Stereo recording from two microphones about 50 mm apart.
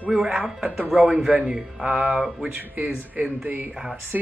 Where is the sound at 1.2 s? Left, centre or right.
Right.